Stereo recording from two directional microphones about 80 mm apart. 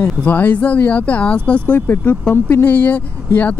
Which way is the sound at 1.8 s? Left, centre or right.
Left.